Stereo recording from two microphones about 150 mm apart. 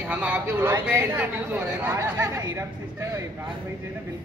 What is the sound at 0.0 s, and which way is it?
Speech, 10° right (ahead or behind).